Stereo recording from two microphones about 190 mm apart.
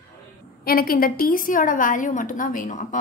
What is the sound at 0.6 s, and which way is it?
A woman's voice, 50° left (ahead or behind).